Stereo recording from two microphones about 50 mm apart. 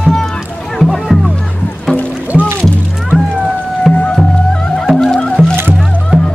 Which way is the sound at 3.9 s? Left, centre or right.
Left.